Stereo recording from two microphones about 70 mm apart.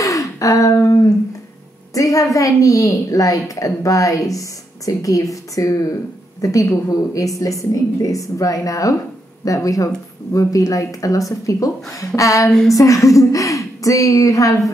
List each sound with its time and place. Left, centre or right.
0.0 s a sound: left
2.0 s a woman's voice: left
12.4 s a woman's voice: centre
12.7 s a child's voice: left